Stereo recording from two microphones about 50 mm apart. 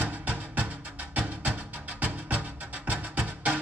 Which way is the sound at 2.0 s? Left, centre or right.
Right.